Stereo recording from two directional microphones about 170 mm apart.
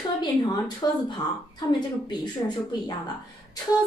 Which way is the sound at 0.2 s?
25° left (ahead or behind).